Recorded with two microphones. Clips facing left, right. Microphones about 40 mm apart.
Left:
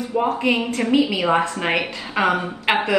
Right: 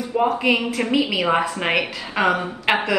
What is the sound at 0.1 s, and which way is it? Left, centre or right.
Speech, centre.